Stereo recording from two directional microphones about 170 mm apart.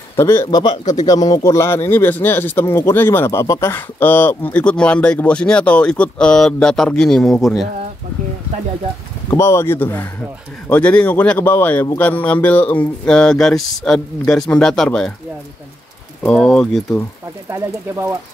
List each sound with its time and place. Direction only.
0.1 s a man's voice: 15° left (ahead or behind); by 7.6 s centre (ahead or behind)
9.3 s a man's voice: 15° left (ahead or behind)
16.2 s speech: 5° left (ahead or behind)
17.5 s speech: 15° right (ahead or behind)